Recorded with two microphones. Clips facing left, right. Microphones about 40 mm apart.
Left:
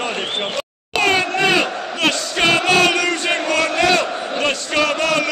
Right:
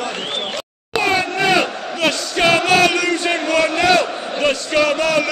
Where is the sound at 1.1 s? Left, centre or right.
Centre.